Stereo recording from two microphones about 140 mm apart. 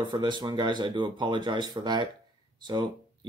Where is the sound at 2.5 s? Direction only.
30° right (ahead or behind).